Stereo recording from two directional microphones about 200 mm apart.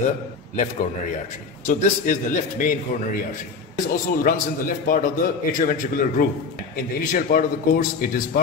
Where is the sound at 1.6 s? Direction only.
40° left (ahead or behind).